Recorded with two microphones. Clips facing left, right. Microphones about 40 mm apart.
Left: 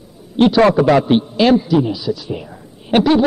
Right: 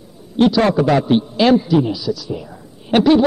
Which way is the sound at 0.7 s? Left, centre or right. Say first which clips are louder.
Left 3 dB; left.